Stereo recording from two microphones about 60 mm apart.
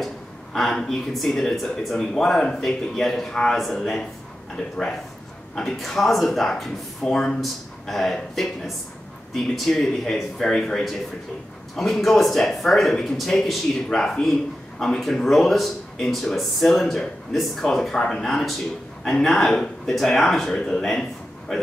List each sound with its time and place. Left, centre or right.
0.0 s speech: centre
13.8 s speech: centre